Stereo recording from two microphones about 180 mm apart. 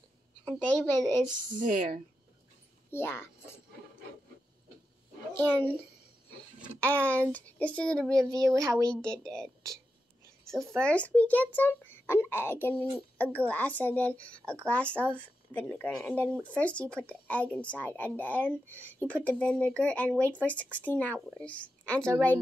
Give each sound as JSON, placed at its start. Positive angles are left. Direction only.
{"t": 0.5, "sound": "speech", "side_deg": 10}
{"t": 1.6, "sound": "speech", "side_deg": -45}
{"t": 2.9, "sound": "a woman's voice", "side_deg": 15}
{"t": 5.3, "sound": "speech", "side_deg": 10}
{"t": 6.8, "sound": "speech", "side_deg": 10}
{"t": 8.3, "sound": "speech", "side_deg": -20}
{"t": 8.8, "sound": "a woman's voice", "side_deg": 5}
{"t": 10.8, "sound": "speech", "side_deg": 5}